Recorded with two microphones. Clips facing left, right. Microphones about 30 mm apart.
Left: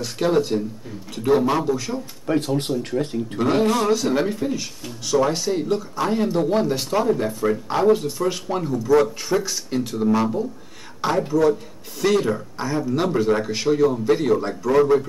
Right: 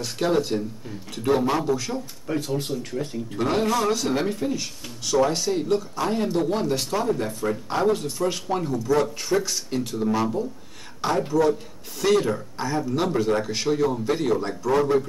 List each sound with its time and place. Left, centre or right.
0.0 s speech: centre
2.3 s speech: left
3.3 s a man's voice: centre